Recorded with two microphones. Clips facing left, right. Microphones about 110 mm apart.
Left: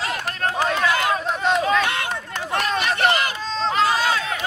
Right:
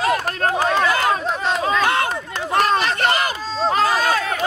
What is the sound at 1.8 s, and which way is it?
Run, 40° right (ahead or behind).